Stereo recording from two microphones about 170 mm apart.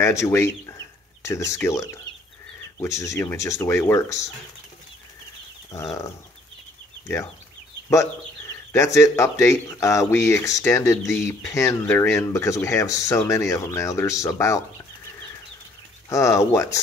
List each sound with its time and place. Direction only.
0.0 s speech: 15° left (ahead or behind)
5.7 s a sound: 20° left (ahead or behind)
7.9 s speech: 20° left (ahead or behind)
16.1 s speech: 15° left (ahead or behind)